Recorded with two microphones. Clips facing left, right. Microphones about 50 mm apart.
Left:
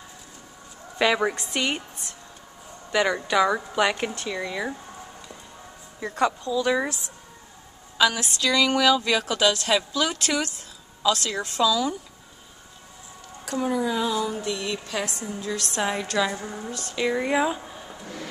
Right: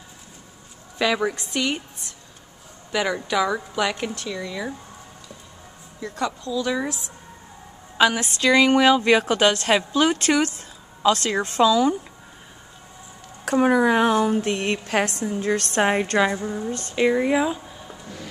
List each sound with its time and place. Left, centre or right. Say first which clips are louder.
0.9 s a woman's voice: even; centre
2.9 s a woman's voice: left 1 dB; centre
5.9 s a woman's voice: left 3 dB; left
8.0 s a woman's voice: right 3 dB; right
13.5 s a woman's voice: right 7 dB; right
16.3 s a woman's voice: right 6 dB; centre